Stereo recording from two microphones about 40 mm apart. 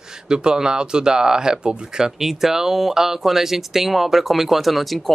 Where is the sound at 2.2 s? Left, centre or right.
Centre.